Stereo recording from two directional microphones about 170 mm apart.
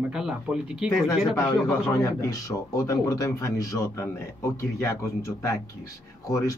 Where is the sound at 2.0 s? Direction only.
20° left (ahead or behind).